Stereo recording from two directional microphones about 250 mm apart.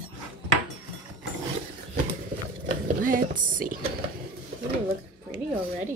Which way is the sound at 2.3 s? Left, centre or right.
Right.